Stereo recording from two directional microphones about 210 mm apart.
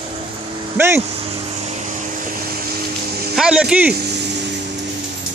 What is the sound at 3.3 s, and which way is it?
Speech, 5° right (ahead or behind).